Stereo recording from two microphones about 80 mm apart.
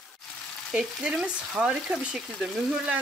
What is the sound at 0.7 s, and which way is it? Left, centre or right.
Frying, centre.